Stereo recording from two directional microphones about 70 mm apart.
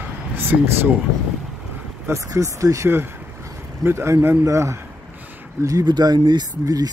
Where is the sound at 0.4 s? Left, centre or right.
Right.